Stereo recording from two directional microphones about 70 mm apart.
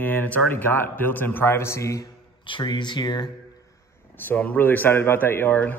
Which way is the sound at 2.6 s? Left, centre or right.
Left.